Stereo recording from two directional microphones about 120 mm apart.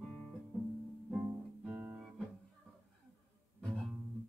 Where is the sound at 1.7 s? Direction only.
15° right (ahead or behind).